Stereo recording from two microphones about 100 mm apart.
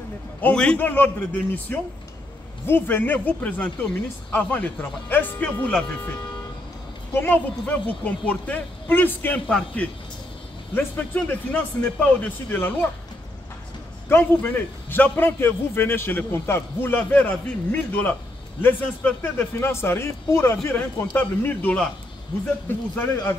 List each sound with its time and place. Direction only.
0.4 s speech: 15° left (ahead or behind)
7.2 s a man's voice: 15° left (ahead or behind)
10.7 s speech: 20° left (ahead or behind)
14.0 s a man's voice: 20° left (ahead or behind)